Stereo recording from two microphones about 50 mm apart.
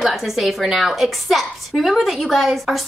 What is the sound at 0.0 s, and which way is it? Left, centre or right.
A woman's voice, centre.